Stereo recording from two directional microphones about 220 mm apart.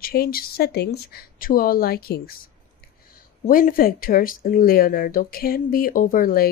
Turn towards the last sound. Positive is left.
turn(degrees=40)  # may be behind; listen again after turning